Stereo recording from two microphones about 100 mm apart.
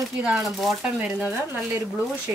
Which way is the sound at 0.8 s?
10° right (ahead or behind).